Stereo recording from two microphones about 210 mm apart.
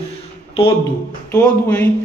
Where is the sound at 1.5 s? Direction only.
5° left (ahead or behind).